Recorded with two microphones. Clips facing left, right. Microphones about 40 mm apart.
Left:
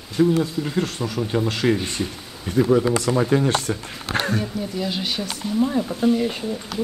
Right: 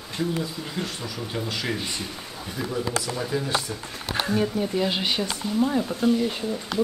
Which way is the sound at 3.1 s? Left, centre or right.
Left.